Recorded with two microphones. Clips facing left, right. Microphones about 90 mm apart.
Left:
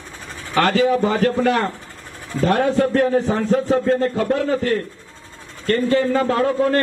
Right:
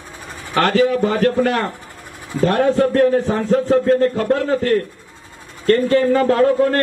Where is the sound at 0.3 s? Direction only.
20° right (ahead or behind).